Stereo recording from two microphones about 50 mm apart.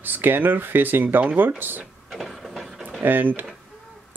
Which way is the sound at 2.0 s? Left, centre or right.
Centre.